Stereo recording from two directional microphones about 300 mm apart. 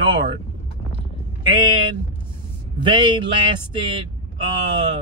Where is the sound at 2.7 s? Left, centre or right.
Centre.